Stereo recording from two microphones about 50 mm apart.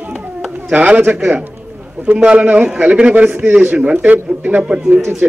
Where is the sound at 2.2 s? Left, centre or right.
Right.